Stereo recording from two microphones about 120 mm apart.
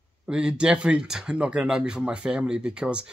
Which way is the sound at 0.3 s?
10° right (ahead or behind).